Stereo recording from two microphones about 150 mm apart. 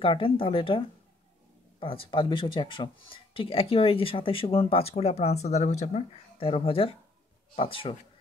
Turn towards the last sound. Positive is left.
turn(degrees=40)  # may be behind; listen again after turning